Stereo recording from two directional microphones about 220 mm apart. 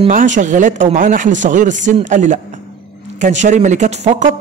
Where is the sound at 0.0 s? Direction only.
35° right (ahead or behind).